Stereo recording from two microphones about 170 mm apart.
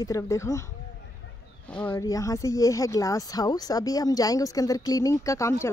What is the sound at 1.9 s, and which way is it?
A child's voice, 20° left (ahead or behind).